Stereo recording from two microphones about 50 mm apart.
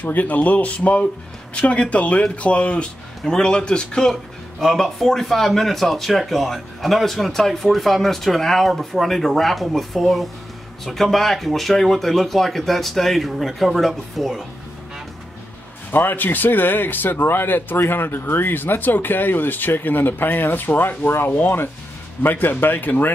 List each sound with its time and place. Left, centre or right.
0.0 s speech: left; by 4.2 s centre
4.6 s speech: centre
15.9 s speech: left